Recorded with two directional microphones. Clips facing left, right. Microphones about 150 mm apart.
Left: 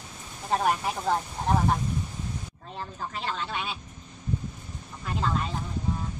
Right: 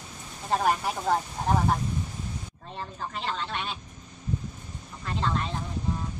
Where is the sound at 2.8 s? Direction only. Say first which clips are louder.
Even; centre (ahead or behind).